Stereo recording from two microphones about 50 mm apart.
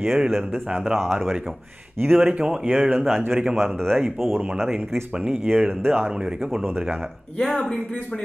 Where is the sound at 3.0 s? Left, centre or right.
Centre.